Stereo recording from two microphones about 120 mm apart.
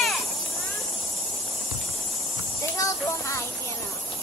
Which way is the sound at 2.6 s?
25° left (ahead or behind).